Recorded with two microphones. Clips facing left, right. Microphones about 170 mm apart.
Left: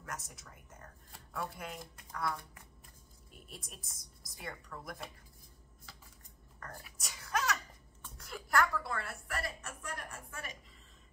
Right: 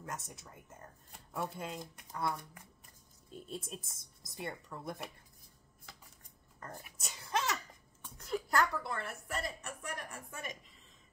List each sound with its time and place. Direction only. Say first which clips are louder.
0.0 s speech: right 2 dB; 25° right (ahead or behind)
3.4 s speech: right 8 dB; 25° right (ahead or behind)
6.6 s speech: right 1 dB; 25° right (ahead or behind)